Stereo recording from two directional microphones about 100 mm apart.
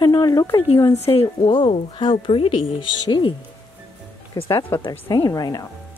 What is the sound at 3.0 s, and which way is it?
Speech, 50° left (ahead or behind).